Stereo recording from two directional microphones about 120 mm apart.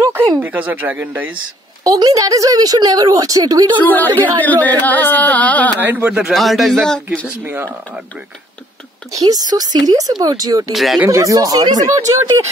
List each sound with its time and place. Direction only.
0.4 s speech: 15° right (ahead or behind)
1.9 s speech: 30° right (ahead or behind)
3.8 s speech: 15° left (ahead or behind)
5.8 s speech: 15° right (ahead or behind); by 7.2 s 5° left (ahead or behind)
7.4 s speech: 15° right (ahead or behind)
9.1 s speech: 30° right (ahead or behind)
10.7 s speech: centre (ahead or behind)
11.0 s speech: 25° right (ahead or behind)